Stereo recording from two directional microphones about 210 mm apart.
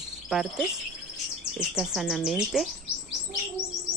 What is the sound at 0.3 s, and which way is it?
Speech, centre (ahead or behind).